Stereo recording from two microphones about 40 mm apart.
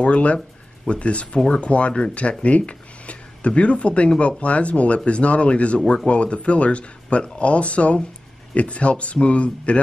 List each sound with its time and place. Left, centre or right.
0.0 s speech: left